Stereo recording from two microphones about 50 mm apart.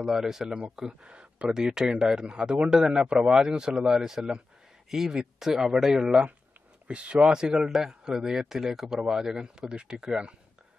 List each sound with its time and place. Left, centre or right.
0.0 s speech: centre
1.0 s speech: right
1.5 s speech: centre
6.9 s speech: right